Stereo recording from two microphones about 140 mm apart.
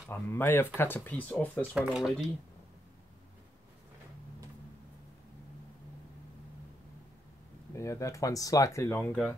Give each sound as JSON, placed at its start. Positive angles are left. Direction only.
{"t": 0.1, "sound": "speech", "side_deg": 15}
{"t": 1.8, "sound": "speech", "side_deg": -5}
{"t": 7.7, "sound": "speech", "side_deg": 20}